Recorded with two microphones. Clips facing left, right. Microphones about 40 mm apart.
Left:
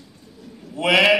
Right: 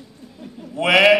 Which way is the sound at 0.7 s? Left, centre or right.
Right.